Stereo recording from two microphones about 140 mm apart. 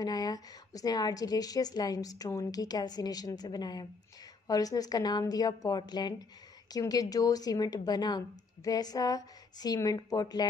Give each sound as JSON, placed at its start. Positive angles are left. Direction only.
{"t": 0.0, "sound": "a woman's voice", "side_deg": 25}